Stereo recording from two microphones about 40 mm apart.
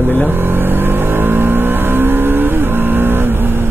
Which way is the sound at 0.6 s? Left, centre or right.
Right.